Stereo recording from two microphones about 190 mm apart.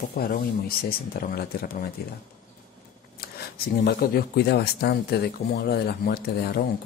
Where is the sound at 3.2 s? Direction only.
55° left (ahead or behind).